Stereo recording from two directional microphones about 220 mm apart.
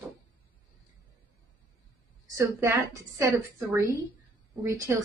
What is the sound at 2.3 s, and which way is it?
A woman's voice, 15° right (ahead or behind).